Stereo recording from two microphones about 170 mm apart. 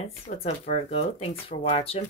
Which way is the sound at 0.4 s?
40° left (ahead or behind).